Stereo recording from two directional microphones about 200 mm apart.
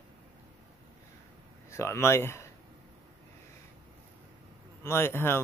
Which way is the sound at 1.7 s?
15° left (ahead or behind).